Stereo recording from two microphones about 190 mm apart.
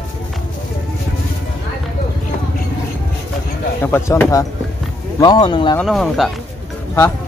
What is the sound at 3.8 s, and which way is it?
Speech, 10° left (ahead or behind).